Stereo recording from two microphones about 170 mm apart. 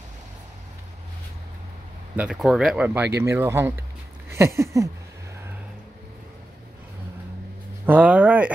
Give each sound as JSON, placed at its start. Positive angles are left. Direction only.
{"t": 2.1, "sound": "speech", "side_deg": -5}
{"t": 7.8, "sound": "speech", "side_deg": -10}